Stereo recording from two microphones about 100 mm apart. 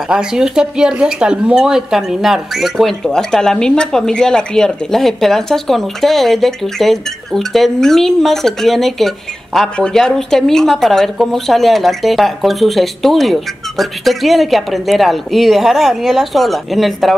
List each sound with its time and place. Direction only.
0.1 s speech: 5° right (ahead or behind)